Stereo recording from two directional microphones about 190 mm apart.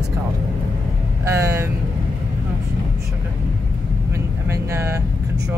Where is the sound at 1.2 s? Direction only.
15° right (ahead or behind).